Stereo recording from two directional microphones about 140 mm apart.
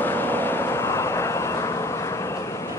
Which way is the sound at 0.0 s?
15° left (ahead or behind).